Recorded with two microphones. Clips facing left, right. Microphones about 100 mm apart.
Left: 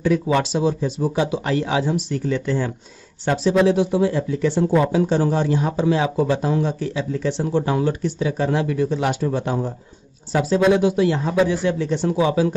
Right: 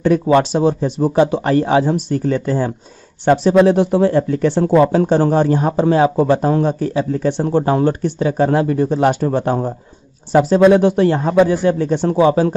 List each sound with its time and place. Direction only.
0.0 s speech: 55° right (ahead or behind)